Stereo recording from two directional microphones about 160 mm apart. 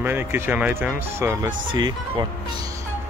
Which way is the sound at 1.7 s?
25° right (ahead or behind).